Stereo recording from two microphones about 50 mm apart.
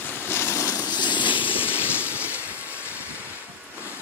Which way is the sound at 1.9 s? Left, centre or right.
Left.